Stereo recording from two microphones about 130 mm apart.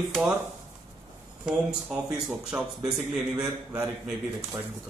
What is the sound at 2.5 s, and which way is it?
Speech, 10° right (ahead or behind).